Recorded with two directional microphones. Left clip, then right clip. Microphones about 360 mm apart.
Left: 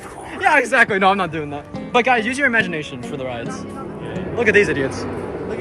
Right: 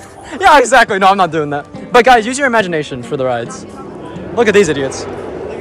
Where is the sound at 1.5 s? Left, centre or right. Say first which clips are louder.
Right 8 dB; right.